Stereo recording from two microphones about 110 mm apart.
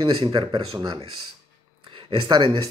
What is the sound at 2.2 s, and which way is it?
Speech, 45° right (ahead or behind).